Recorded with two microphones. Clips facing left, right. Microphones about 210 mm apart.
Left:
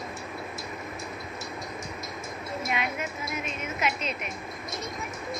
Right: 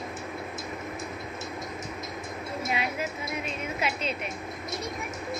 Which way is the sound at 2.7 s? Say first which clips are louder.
Right 1 dB; 30° right (ahead or behind).